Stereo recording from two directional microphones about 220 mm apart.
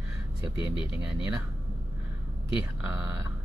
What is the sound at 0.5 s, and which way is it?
Speech, 20° left (ahead or behind).